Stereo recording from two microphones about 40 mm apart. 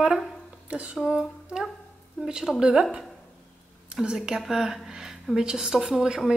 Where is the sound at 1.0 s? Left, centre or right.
Centre.